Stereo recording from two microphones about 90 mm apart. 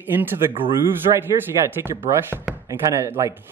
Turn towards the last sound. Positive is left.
turn(degrees=-35)  # may be behind; listen again after turning